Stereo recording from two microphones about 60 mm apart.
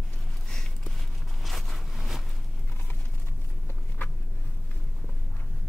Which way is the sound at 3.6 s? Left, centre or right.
Left.